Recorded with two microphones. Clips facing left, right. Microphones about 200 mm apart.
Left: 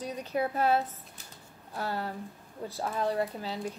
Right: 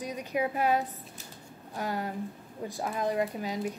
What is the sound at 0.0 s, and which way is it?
Speech, 15° right (ahead or behind).